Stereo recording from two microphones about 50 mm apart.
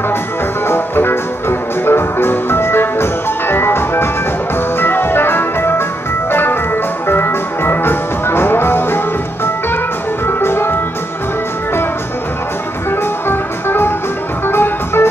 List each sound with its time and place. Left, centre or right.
0.7 s music: left
13.3 s music: left